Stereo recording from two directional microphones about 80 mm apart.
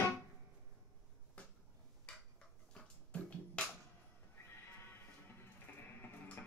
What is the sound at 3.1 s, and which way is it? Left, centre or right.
Music, centre.